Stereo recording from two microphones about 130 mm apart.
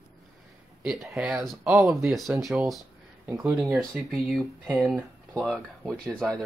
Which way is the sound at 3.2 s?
20° right (ahead or behind).